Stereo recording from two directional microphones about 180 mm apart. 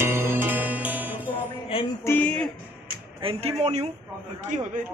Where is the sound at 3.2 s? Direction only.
35° right (ahead or behind).